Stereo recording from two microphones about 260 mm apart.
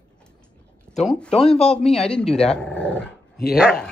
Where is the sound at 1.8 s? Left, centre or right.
Left.